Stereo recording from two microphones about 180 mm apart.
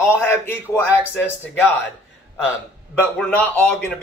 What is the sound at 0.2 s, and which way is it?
Speech, 10° left (ahead or behind).